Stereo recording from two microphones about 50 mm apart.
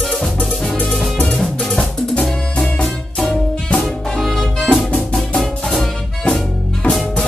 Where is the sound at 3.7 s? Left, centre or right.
Centre.